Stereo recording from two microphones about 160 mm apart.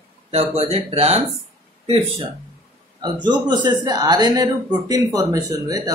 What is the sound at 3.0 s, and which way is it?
Speech, 25° right (ahead or behind).